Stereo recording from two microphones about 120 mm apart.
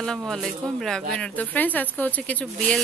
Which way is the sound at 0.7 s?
5° left (ahead or behind).